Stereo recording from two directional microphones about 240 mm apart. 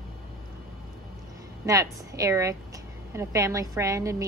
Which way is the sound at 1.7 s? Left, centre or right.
Centre.